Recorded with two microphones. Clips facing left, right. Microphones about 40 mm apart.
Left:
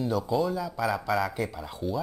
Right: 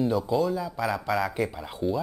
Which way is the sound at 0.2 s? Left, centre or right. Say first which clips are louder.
Right 2 dB; centre.